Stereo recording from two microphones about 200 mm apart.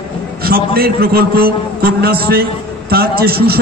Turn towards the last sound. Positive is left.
turn(degrees=-50)  # may be behind; listen again after turning